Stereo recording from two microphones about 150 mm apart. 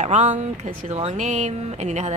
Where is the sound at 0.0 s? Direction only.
55° right (ahead or behind).